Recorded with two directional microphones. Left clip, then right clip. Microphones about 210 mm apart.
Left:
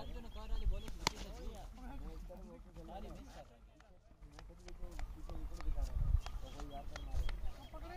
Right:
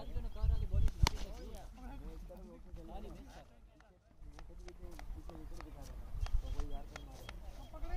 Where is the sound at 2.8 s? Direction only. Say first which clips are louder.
Left 1 dB; 45° left (ahead or behind).